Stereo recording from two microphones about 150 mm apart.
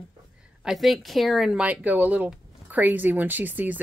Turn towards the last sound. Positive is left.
turn(degrees=-10)  # may be behind; listen again after turning